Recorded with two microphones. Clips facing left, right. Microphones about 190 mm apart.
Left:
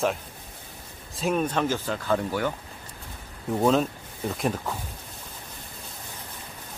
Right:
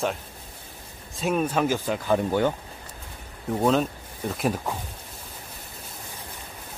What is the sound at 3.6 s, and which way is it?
A man's voice, centre (ahead or behind).